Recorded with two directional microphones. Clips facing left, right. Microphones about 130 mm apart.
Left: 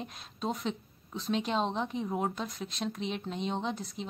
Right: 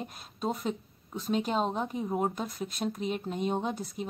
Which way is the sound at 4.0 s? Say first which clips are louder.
Right 3 dB; 50° right (ahead or behind).